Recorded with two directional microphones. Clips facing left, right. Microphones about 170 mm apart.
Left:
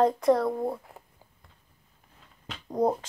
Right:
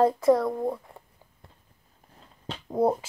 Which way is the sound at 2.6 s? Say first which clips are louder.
Right 2 dB; 5° right (ahead or behind).